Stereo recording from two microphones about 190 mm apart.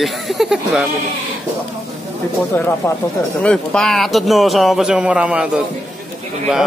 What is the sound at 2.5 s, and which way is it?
Speech, 10° left (ahead or behind).